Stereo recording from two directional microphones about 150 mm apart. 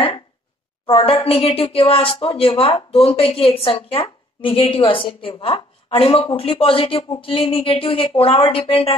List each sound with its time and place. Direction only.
0.8 s speech: 35° left (ahead or behind)